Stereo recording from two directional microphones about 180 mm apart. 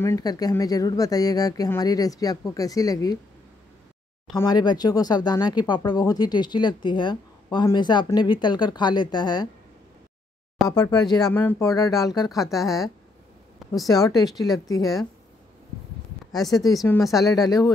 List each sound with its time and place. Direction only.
0.0 s speech: 20° left (ahead or behind)
4.4 s speech: 20° left (ahead or behind)
10.7 s speech: 20° left (ahead or behind)
11.1 s speech: 5° left (ahead or behind)
12.3 s speech: centre (ahead or behind)
13.8 s speech: 20° left (ahead or behind)
16.7 s speech: 20° left (ahead or behind)
17.0 s speech: centre (ahead or behind)
17.3 s speech: 20° left (ahead or behind)